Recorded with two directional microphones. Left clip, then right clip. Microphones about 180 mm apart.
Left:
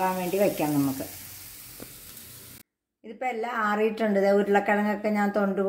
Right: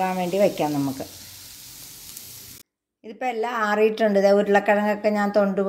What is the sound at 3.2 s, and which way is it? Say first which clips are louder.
A woman's voice: right 4 dB; 50° right (ahead or behind).